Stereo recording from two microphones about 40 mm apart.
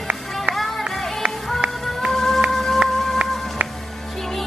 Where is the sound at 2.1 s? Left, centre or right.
Centre.